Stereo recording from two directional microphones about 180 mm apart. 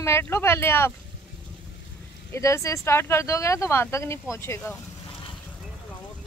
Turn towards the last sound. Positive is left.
turn(degrees=15)  # may be behind; listen again after turning